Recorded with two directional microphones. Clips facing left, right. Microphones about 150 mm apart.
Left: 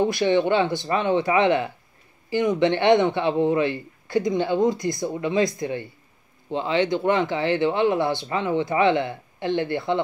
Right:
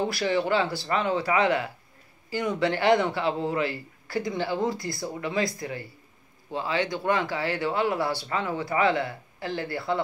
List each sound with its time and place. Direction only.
0.0 s a man's voice: 20° left (ahead or behind)